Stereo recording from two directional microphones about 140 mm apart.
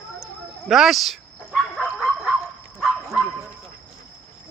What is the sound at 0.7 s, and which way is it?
Dog, centre (ahead or behind).